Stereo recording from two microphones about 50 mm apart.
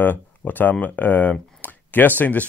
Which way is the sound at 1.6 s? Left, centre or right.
Left.